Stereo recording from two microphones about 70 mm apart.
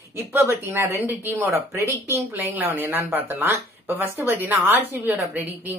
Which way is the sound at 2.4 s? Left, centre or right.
Right.